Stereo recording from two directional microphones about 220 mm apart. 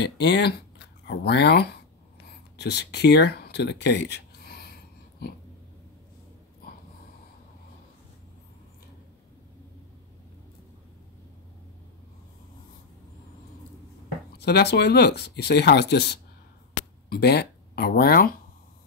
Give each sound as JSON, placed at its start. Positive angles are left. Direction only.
{"t": 0.0, "sound": "speech", "side_deg": 50}
{"t": 14.4, "sound": "speech", "side_deg": 50}